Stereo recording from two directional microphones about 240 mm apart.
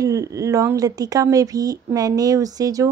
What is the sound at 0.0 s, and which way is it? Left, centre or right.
Speech, centre.